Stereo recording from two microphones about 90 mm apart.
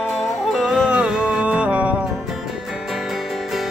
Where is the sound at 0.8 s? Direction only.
10° right (ahead or behind).